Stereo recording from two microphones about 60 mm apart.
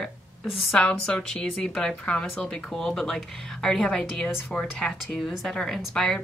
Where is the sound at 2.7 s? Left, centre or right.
Centre.